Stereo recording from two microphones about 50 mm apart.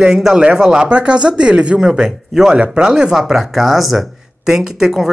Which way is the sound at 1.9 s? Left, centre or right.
Centre.